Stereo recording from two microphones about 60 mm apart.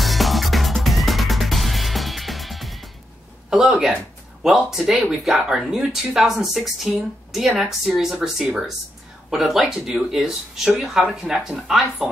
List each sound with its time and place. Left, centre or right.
0.0 s music: centre
3.4 s speech: centre